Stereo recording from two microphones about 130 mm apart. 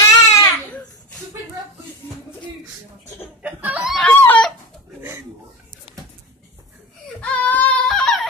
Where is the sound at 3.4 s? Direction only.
10° right (ahead or behind).